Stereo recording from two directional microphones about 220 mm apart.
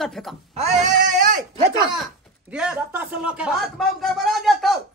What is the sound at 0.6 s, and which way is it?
Speech, 35° right (ahead or behind).